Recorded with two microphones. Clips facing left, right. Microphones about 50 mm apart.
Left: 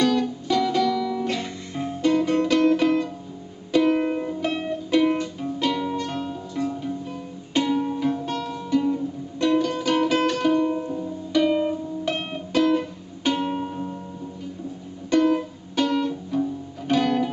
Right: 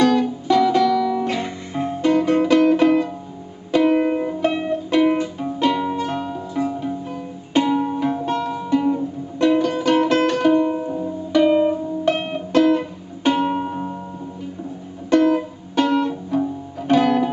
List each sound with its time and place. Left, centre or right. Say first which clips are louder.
0.0 s music: right 5 dB; centre
15.0 s music: right 4 dB; centre